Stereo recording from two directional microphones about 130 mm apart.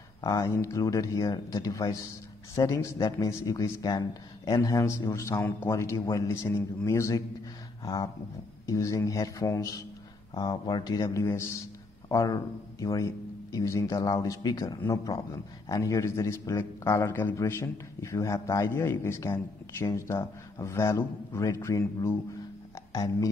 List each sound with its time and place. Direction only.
0.2 s a man's voice: 25° left (ahead or behind)